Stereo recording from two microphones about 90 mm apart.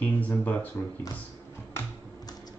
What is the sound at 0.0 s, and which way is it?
Speech, 20° left (ahead or behind).